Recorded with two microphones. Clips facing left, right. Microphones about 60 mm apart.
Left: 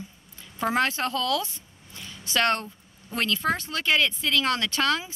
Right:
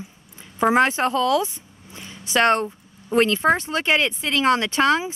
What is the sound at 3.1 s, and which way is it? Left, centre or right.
A woman's voice, right.